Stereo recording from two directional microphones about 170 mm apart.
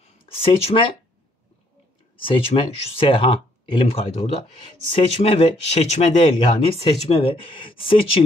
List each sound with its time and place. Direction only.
0.3 s speech: 35° left (ahead or behind)
2.2 s speech: 30° left (ahead or behind)